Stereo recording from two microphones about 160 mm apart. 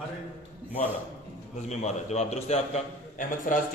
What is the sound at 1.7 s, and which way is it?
A man's voice, 45° left (ahead or behind).